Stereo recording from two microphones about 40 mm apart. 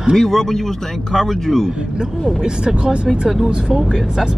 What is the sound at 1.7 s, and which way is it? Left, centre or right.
Speech, right.